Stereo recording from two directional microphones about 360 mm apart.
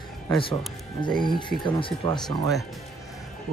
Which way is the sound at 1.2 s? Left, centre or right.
Centre.